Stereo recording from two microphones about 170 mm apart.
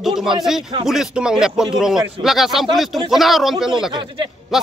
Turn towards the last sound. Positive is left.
turn(degrees=0)  # may be behind; listen again after turning